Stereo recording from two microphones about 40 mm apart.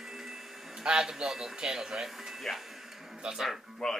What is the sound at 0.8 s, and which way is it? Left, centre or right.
Speech, centre.